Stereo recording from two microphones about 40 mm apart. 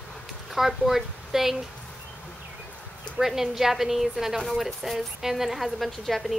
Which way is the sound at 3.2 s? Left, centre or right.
Centre.